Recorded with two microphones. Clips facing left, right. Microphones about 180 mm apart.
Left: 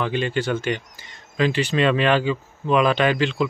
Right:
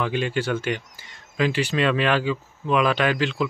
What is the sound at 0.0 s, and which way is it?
Speech, 10° right (ahead or behind).